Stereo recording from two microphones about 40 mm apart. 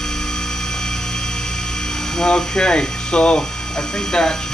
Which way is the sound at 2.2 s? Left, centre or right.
Left.